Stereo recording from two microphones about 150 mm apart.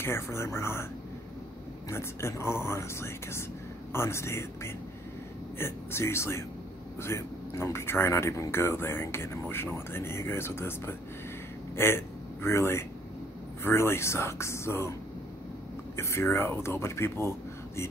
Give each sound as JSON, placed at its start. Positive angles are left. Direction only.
{"t": 0.0, "sound": "speech", "side_deg": 15}
{"t": 1.9, "sound": "speech", "side_deg": 20}
{"t": 16.0, "sound": "speech", "side_deg": 15}